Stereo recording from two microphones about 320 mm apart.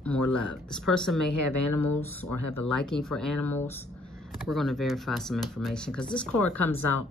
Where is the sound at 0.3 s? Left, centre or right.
Centre.